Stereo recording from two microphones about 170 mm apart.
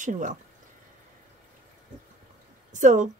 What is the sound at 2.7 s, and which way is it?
Speech, 45° right (ahead or behind).